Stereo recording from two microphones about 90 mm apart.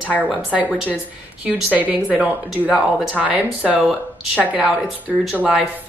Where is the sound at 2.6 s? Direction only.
Centre (ahead or behind).